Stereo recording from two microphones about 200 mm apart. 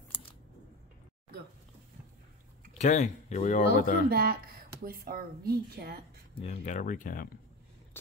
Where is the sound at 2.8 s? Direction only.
35° left (ahead or behind).